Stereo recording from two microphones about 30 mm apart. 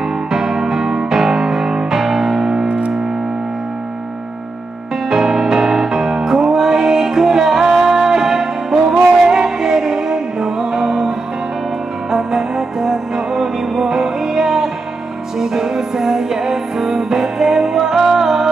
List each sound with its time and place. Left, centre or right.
0.3 s music: centre
1.4 s music: right
5.1 s music: centre